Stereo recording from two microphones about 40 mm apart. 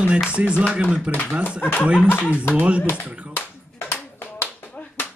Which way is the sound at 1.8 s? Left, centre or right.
Right.